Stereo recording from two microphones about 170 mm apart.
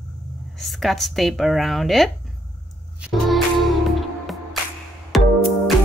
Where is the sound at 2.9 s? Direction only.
5° right (ahead or behind).